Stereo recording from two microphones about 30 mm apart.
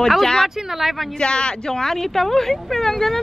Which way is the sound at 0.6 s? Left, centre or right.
Centre.